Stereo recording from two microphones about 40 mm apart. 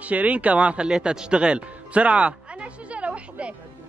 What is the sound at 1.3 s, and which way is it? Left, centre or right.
Music, right.